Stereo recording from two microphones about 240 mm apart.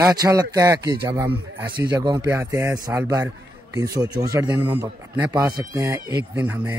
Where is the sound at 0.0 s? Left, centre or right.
Centre.